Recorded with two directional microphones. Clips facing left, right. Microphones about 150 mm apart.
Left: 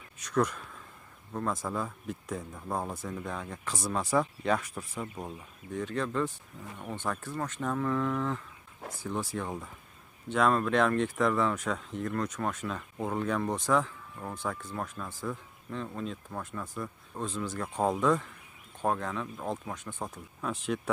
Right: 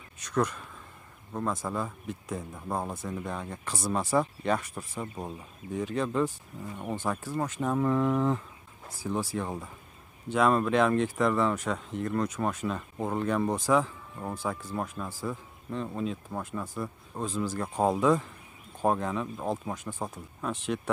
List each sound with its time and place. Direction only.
0.2 s speech: centre (ahead or behind)
5.0 s speech: 25° right (ahead or behind)
5.7 s a man's voice: 10° right (ahead or behind)
9.0 s a man's voice: 5° right (ahead or behind)